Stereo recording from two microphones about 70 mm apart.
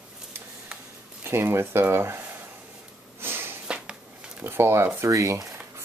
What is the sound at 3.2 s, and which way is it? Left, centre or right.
Snort, right.